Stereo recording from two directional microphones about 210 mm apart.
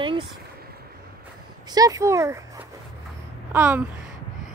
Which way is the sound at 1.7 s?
15° right (ahead or behind).